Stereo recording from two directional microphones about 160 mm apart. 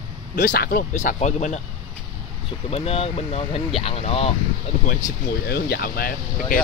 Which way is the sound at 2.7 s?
40° left (ahead or behind).